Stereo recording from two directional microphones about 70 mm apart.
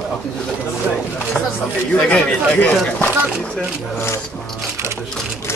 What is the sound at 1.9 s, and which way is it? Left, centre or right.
Speech, centre.